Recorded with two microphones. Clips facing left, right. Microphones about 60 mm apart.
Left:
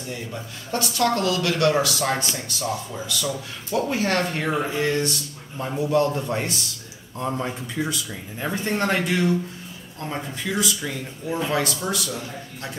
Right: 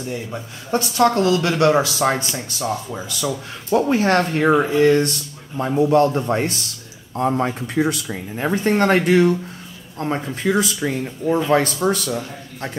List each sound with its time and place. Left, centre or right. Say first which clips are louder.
0.3 s speech: right 7 dB; right
7.2 s speech: right 7 dB; right